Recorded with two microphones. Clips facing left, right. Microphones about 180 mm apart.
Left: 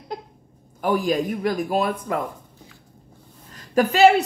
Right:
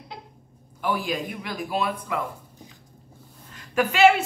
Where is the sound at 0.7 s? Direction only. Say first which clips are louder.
Left 6 dB; 45° left (ahead or behind).